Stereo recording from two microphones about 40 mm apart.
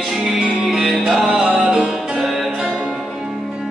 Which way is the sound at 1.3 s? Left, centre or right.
Centre.